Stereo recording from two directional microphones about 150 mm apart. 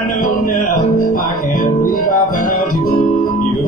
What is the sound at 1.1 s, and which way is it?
Music, 65° left (ahead or behind).